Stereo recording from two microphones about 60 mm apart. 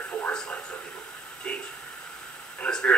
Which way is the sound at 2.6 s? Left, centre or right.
Centre.